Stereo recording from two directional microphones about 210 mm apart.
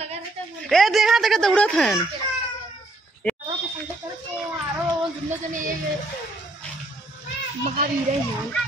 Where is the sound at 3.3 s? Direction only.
10° left (ahead or behind).